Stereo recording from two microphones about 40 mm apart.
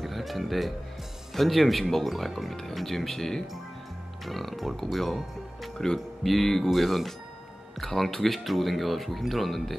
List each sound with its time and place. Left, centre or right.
0.0 s speech: centre